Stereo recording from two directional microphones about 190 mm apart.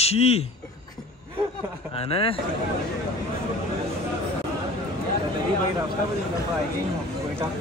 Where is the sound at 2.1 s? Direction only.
30° left (ahead or behind).